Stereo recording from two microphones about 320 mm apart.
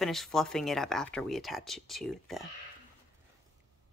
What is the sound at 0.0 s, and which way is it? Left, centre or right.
Speech, centre.